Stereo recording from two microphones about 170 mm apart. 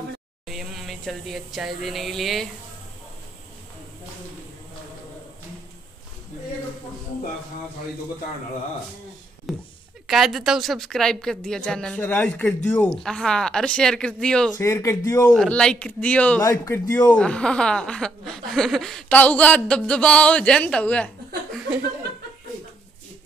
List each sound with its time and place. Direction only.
0.5 s speech: centre (ahead or behind)
9.5 s a sound: centre (ahead or behind)
10.0 s speech: centre (ahead or behind)
14.6 s speech: 15° left (ahead or behind)
15.3 s speech: 5° left (ahead or behind)